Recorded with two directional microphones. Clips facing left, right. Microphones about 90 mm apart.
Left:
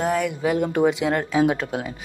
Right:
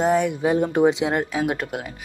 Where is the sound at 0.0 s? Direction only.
20° right (ahead or behind).